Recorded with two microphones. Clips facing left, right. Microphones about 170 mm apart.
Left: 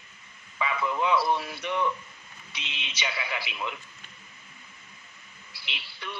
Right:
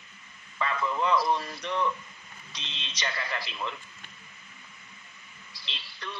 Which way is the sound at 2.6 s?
65° left (ahead or behind).